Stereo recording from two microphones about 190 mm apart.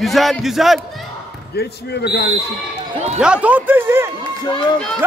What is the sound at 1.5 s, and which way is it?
Speech, 60° left (ahead or behind).